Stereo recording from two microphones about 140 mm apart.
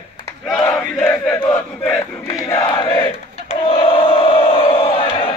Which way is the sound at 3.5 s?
40° left (ahead or behind).